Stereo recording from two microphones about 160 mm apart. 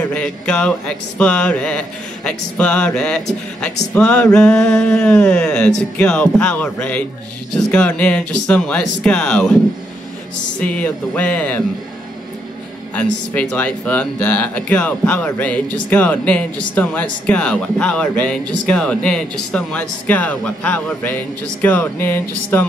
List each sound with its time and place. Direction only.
0.0 s speech: 10° left (ahead or behind)
3.9 s mantra: 5° left (ahead or behind)
5.8 s speech: 5° left (ahead or behind)
10.6 s speech: 10° left (ahead or behind)
12.9 s speech: 10° left (ahead or behind)